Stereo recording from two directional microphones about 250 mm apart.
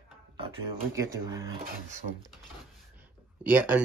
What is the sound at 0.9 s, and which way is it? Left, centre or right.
Speech, centre.